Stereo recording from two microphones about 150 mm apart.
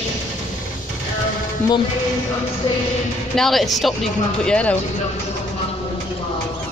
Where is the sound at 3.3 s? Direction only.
Centre (ahead or behind).